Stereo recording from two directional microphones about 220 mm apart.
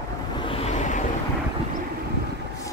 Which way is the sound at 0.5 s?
30° left (ahead or behind).